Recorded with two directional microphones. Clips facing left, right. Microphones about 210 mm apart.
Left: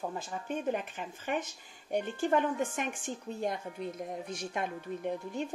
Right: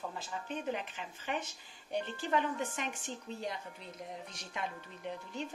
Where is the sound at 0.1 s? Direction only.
50° left (ahead or behind).